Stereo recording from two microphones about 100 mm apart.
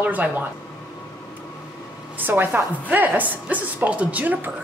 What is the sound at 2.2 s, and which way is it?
A woman's voice, 15° right (ahead or behind).